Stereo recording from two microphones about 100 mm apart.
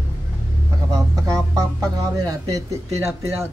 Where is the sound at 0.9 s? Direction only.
35° right (ahead or behind).